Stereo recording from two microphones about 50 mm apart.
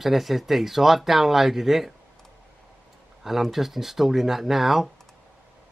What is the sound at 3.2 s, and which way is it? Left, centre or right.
Speech, centre.